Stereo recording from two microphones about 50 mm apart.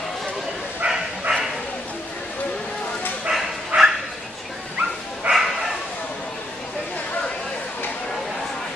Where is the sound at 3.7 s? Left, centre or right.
Right.